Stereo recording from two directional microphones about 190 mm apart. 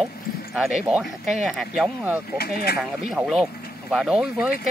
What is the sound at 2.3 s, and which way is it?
Speech, 55° left (ahead or behind).